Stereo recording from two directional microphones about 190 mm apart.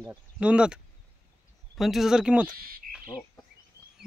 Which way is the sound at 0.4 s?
5° right (ahead or behind).